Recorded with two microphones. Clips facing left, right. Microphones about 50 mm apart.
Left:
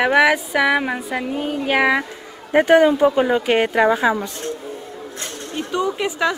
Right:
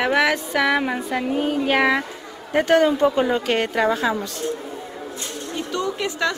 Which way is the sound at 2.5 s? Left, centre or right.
Centre.